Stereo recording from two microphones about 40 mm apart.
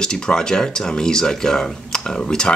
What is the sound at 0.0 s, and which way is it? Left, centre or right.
Speech, centre.